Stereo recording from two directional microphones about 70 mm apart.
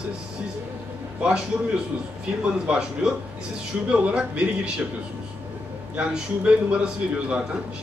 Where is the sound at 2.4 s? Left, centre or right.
Centre.